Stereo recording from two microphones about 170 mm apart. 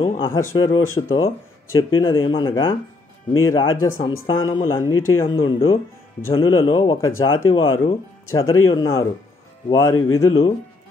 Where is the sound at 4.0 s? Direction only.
20° left (ahead or behind).